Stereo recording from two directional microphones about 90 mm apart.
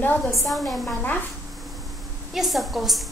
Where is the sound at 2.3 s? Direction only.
Centre (ahead or behind).